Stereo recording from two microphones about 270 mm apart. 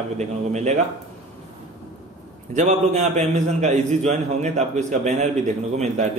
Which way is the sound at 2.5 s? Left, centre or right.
Right.